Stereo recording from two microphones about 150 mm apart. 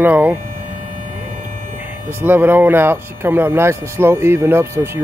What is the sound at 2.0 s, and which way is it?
Speech, 10° right (ahead or behind).